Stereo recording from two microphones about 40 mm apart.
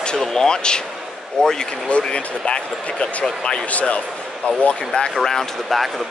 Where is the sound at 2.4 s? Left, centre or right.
Left.